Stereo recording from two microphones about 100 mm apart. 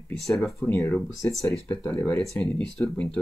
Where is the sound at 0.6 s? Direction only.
20° left (ahead or behind).